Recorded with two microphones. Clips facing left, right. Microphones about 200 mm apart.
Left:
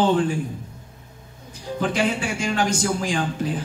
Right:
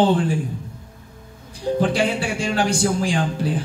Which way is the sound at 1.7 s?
35° right (ahead or behind).